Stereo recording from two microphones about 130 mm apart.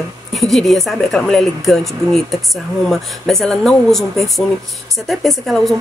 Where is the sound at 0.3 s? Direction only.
Centre (ahead or behind).